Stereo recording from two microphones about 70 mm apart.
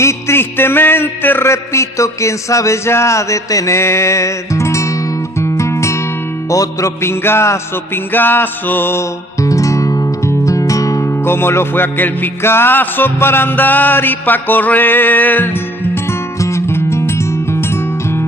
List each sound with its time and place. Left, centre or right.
0.0 s music: left
1.5 s a sound: left
5.4 s music: left
6.5 s a sound: left
7.0 s music: left
8.1 s music: left
9.4 s music: left
11.2 s music: left
16.3 s music: left